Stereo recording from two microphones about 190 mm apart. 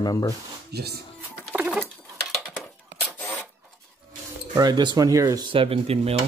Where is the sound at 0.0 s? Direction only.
20° left (ahead or behind).